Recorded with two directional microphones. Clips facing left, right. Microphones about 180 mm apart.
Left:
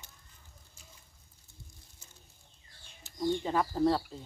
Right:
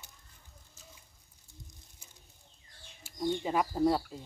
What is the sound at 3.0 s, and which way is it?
Bird, 20° right (ahead or behind).